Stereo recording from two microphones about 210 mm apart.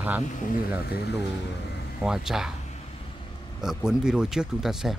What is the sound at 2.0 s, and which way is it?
Speech, 5° right (ahead or behind).